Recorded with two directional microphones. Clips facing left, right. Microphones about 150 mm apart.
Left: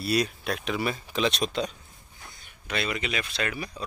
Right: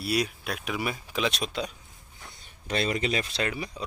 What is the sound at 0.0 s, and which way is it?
Speech, 10° right (ahead or behind).